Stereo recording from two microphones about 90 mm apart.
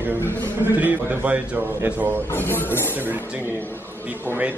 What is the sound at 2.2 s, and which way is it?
Speech, 25° left (ahead or behind).